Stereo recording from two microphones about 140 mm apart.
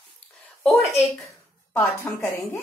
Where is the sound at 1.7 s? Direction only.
15° left (ahead or behind).